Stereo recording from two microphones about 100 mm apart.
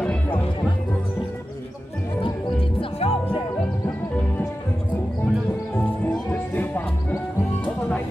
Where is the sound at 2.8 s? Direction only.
75° left (ahead or behind).